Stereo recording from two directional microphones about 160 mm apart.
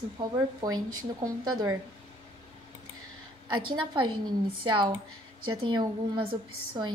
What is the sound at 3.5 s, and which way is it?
A woman's voice, 30° right (ahead or behind).